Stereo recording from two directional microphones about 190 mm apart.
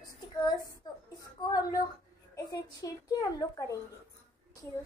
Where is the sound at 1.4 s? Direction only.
20° left (ahead or behind).